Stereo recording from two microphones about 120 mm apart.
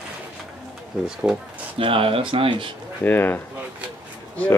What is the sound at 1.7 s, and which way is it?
Speech, 50° right (ahead or behind).